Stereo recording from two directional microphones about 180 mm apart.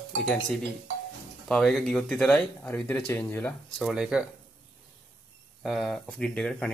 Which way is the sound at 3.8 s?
5° right (ahead or behind).